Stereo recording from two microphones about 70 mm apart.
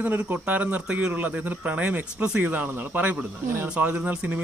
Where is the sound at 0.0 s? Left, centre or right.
Right.